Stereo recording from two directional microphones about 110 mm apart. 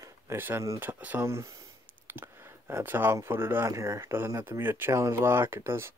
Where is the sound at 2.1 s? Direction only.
20° right (ahead or behind).